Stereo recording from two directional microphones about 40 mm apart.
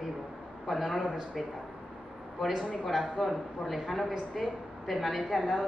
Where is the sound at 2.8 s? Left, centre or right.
Centre.